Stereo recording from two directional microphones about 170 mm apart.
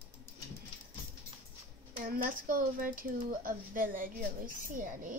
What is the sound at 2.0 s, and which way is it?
Speech, 55° right (ahead or behind).